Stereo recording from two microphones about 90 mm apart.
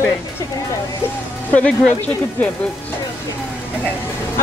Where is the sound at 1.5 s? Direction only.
15° left (ahead or behind).